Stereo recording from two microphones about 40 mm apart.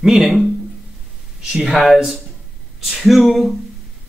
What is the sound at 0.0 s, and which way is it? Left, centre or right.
Speech, centre.